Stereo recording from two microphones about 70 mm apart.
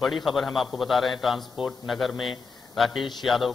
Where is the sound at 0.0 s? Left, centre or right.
Centre.